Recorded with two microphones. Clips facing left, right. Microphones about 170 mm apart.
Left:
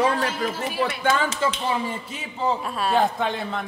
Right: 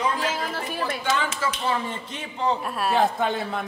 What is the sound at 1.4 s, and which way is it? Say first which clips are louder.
Speech: left 2 dB; 25° left (ahead or behind).